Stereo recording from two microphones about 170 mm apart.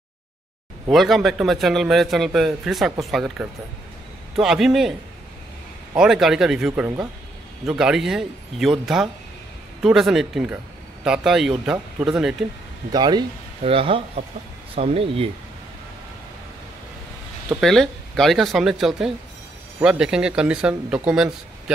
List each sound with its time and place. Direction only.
0.8 s a man's voice: centre (ahead or behind)
5.9 s a man's voice: centre (ahead or behind)
12.9 s speech: 25° right (ahead or behind)
17.6 s a man's voice: centre (ahead or behind)